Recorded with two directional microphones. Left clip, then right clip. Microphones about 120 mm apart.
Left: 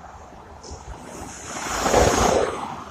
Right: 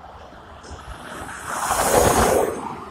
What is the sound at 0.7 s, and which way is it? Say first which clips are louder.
Ocean: right 3 dB; 10° right (ahead or behind).